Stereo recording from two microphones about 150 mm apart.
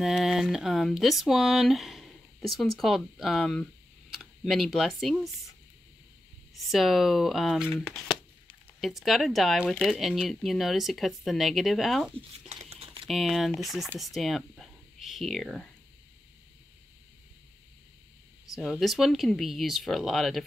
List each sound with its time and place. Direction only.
0.0 s speech: centre (ahead or behind)
6.7 s speech: centre (ahead or behind)
12.2 s a sound: 45° right (ahead or behind)
13.0 s speech: centre (ahead or behind)
18.5 s speech: centre (ahead or behind)